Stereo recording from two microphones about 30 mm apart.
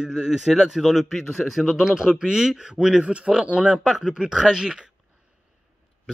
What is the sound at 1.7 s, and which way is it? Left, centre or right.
Speech, centre.